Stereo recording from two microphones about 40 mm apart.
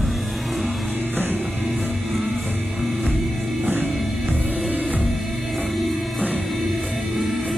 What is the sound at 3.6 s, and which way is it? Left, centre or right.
Music, right.